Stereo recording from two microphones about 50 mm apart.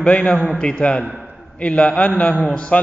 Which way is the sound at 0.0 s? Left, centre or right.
Left.